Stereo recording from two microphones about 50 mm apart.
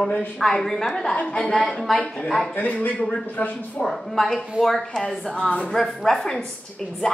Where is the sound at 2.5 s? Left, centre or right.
Left.